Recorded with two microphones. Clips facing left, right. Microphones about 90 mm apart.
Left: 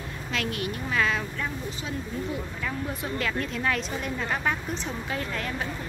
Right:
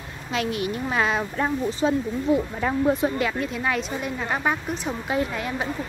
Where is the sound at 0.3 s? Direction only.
20° right (ahead or behind).